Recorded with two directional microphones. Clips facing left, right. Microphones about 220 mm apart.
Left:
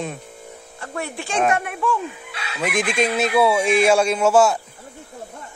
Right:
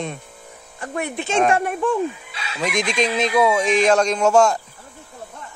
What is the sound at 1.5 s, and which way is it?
Speech, 35° right (ahead or behind).